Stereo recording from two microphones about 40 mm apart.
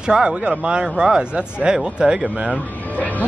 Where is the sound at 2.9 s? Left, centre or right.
Left.